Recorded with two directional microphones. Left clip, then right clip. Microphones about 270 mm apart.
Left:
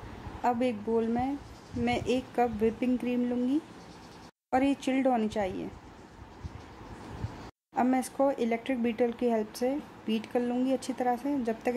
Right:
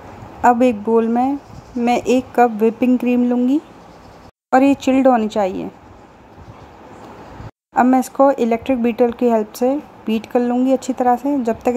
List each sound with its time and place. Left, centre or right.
0.4 s a woman's voice: right
7.7 s speech: centre